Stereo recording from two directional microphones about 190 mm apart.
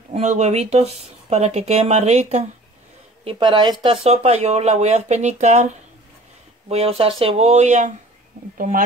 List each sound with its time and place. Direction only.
0.1 s a woman's voice: 35° right (ahead or behind)
6.7 s speech: 30° right (ahead or behind)